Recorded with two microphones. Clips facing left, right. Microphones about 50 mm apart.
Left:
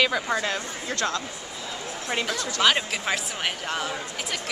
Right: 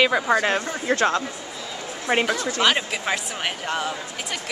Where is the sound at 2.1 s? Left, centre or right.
Right.